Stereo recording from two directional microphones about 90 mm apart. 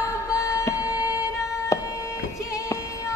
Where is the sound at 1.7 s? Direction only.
35° left (ahead or behind).